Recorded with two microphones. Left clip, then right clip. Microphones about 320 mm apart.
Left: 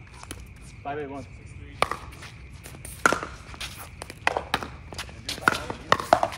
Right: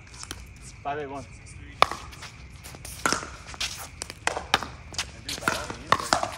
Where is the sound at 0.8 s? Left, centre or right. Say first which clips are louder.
Right 1 dB; centre.